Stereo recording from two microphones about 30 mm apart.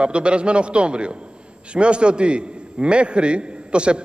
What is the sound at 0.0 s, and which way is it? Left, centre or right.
A man's voice, right.